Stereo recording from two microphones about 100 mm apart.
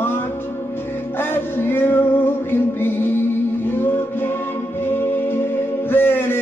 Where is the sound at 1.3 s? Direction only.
20° left (ahead or behind).